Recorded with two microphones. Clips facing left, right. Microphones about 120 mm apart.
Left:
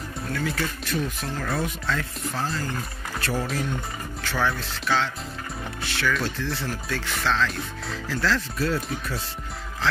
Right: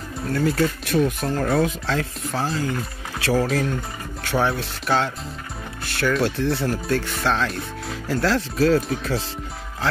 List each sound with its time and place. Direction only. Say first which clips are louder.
0.3 s speech: right 8 dB; 40° right (ahead or behind)
0.8 s speech: right 8 dB; 60° right (ahead or behind)
1.6 s speech: right 6 dB; 70° right (ahead or behind)
3.2 s speech: right 7 dB; 90° right
4.2 s speech: right 4 dB; 55° right (ahead or behind); by 8.8 s 80° right